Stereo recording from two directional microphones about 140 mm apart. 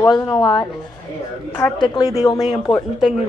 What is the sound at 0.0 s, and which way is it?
Speech, 25° left (ahead or behind).